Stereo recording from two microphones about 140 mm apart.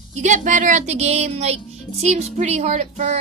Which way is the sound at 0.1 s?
60° right (ahead or behind).